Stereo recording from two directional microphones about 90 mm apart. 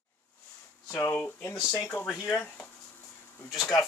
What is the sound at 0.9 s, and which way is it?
Speech, 35° left (ahead or behind).